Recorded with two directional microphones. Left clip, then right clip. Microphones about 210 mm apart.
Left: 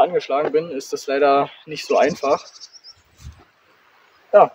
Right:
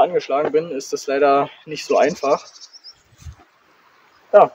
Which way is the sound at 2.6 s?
25° right (ahead or behind).